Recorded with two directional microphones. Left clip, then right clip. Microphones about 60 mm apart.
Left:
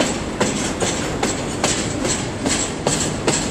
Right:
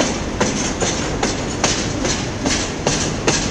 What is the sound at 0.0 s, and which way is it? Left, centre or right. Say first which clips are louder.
Train: right 1 dB; centre.